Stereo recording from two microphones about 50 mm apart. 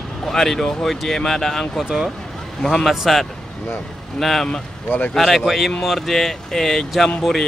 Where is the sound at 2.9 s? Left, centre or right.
Centre.